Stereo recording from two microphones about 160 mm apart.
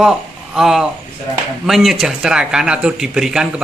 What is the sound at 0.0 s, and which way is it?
Speech, 5° right (ahead or behind).